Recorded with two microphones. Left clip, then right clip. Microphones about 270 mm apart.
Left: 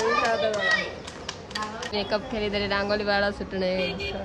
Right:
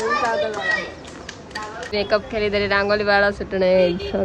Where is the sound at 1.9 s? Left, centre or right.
Centre.